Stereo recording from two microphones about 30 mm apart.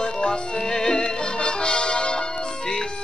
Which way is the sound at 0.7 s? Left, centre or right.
Centre.